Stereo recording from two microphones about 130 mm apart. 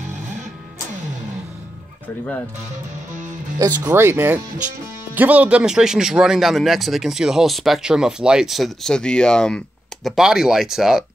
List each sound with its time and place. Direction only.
3.5 s speech: 30° right (ahead or behind); by 11.1 s 5° right (ahead or behind)